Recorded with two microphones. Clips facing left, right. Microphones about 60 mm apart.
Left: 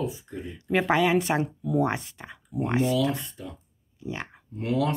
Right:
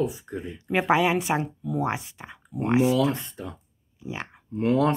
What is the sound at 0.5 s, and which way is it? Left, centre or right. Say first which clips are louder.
A woman's voice: right 1 dB; centre.